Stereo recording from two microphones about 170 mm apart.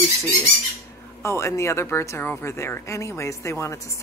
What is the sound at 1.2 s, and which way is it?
Speech, 15° left (ahead or behind).